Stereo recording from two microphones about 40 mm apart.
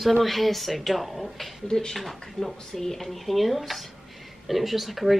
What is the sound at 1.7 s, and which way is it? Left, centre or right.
Speech, centre.